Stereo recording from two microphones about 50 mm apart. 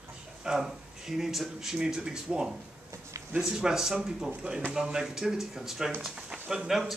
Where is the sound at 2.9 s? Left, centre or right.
Right.